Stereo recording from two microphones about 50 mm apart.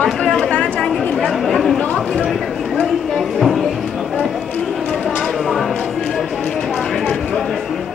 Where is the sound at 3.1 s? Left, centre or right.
Centre.